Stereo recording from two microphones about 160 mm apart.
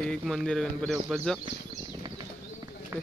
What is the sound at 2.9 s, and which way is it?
Speech, 15° right (ahead or behind).